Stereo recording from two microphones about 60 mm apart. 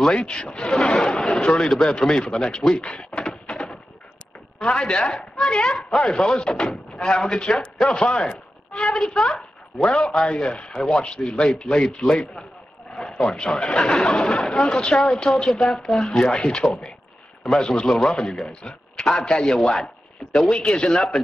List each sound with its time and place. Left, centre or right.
0.1 s a man's voice: centre
15.5 s speech: centre
16.6 s a man's voice: centre